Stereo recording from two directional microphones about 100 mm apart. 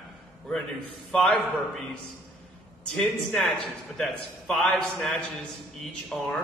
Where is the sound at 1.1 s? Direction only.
5° left (ahead or behind).